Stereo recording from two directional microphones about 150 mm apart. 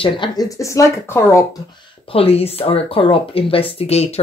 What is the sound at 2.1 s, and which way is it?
Speech, 40° left (ahead or behind).